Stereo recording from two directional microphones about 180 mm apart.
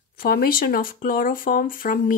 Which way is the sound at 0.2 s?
55° left (ahead or behind).